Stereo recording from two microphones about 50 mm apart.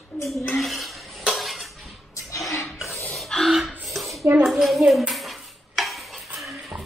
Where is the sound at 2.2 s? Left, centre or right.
Left.